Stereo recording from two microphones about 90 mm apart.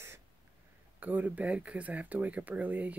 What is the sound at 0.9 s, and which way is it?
Speech, 20° right (ahead or behind).